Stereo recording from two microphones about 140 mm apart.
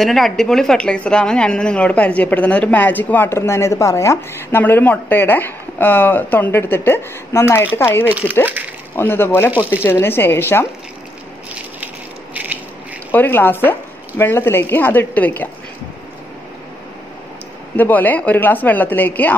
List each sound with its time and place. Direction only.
0.0 s speech: centre (ahead or behind); by 8.0 s 15° left (ahead or behind)
8.0 s speech: 10° right (ahead or behind)
8.9 s speech: 15° left (ahead or behind)
12.4 s ratchet: 10° right (ahead or behind)
13.1 s speech: 15° left (ahead or behind)
17.7 s speech: 15° left (ahead or behind)